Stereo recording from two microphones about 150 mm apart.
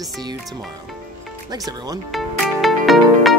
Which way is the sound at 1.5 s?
25° right (ahead or behind).